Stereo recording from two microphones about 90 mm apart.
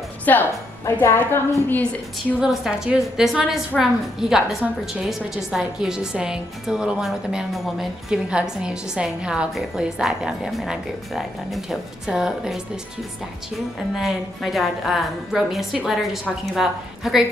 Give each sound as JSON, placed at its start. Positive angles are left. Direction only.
{"t": 0.2, "sound": "a woman's voice", "side_deg": 20}
{"t": 2.4, "sound": "a woman's voice", "side_deg": -5}
{"t": 13.9, "sound": "a woman's voice", "side_deg": 0}